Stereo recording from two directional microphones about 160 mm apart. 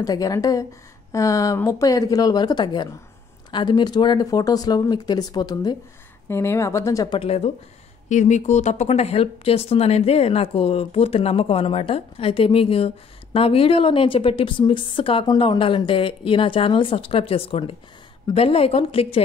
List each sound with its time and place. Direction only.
0.0 s speech: 25° left (ahead or behind)
7.2 s speech: 40° left (ahead or behind)
8.1 s speech: 50° left (ahead or behind)